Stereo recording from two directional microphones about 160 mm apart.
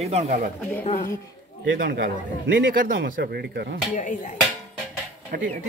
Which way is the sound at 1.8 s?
85° right.